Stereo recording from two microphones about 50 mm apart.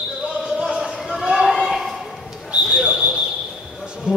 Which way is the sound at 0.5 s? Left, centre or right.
Centre.